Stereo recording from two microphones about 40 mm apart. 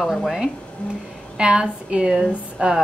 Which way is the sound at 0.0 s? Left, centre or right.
Centre.